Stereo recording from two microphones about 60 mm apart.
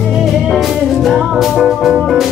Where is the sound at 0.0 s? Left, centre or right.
Centre.